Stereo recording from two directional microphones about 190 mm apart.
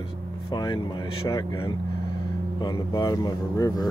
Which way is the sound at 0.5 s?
25° left (ahead or behind).